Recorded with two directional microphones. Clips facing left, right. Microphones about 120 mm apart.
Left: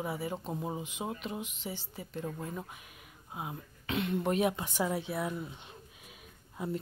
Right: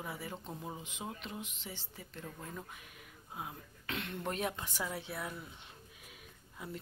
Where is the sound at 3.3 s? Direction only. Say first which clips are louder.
Left 4 dB; 20° left (ahead or behind).